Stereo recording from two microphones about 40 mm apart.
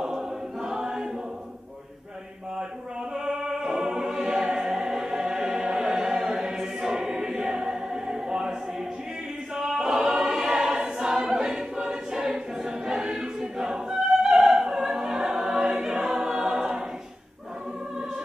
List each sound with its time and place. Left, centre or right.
0.1 s choir: centre
3.2 s music: centre
9.6 s choir: centre
12.6 s opera: centre
15.8 s choir: centre